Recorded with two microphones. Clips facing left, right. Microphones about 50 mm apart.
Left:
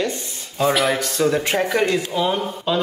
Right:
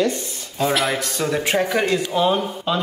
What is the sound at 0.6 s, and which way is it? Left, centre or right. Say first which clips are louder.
Speech: left 2 dB; centre.